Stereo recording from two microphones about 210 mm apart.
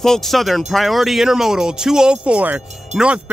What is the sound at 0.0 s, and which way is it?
Speech, centre (ahead or behind).